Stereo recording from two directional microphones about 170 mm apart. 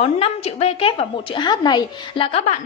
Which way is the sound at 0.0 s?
35° left (ahead or behind).